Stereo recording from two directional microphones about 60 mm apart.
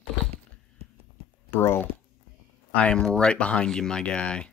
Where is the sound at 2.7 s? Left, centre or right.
Centre.